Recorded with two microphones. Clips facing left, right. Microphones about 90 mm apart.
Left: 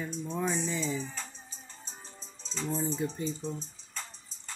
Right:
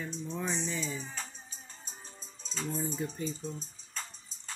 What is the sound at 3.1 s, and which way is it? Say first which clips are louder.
Speech: left 2 dB; 30° left (ahead or behind).